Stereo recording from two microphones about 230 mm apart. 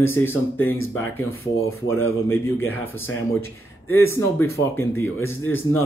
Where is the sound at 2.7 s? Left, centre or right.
Left.